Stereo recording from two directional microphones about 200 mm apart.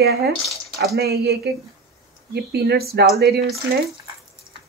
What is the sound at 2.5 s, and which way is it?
Speech, 50° right (ahead or behind).